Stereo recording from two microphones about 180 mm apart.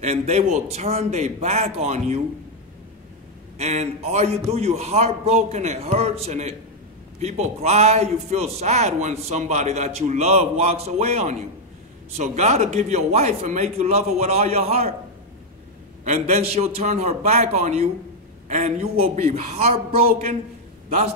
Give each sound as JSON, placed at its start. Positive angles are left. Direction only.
{"t": 0.0, "sound": "a man's voice", "side_deg": -35}
{"t": 3.5, "sound": "a man's voice", "side_deg": -35}
{"t": 16.0, "sound": "a man's voice", "side_deg": -40}